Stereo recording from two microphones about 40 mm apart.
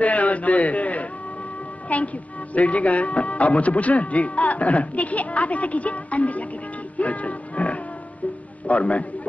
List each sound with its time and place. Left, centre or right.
0.0 s a sound: left
1.9 s music: left
2.5 s speech: left
7.0 s music: left
8.6 s a man's voice: left